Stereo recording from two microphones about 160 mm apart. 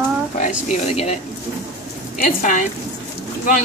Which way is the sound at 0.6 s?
45° left (ahead or behind).